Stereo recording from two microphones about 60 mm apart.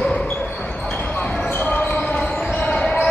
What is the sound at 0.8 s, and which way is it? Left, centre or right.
Basketball bounce, left.